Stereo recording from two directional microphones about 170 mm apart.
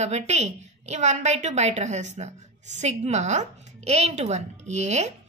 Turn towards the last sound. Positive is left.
turn(degrees=-40)  # may be behind; listen again after turning